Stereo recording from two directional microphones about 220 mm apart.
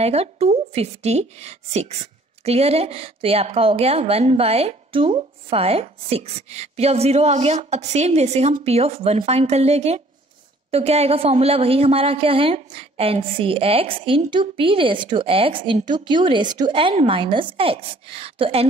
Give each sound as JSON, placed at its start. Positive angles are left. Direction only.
{"t": 0.0, "sound": "a woman's voice", "side_deg": -30}